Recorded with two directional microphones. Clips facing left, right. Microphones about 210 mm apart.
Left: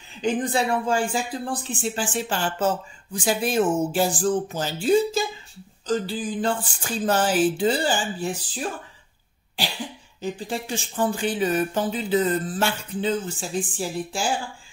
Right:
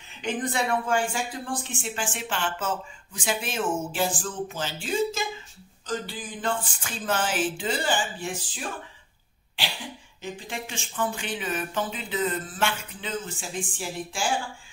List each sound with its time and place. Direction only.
0.2 s speech: 30° left (ahead or behind)
10.2 s speech: 35° left (ahead or behind)